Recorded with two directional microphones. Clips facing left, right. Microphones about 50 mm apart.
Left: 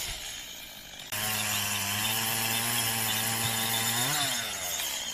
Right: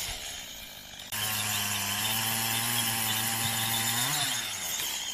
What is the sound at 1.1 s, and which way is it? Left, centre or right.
Chainsaw, left.